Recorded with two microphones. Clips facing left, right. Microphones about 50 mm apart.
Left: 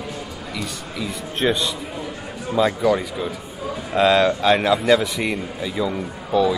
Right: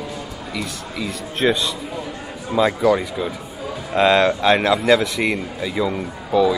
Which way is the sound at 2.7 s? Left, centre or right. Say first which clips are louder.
Right 2 dB; right.